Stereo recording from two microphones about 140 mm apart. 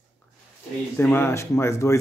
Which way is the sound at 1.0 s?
15° left (ahead or behind).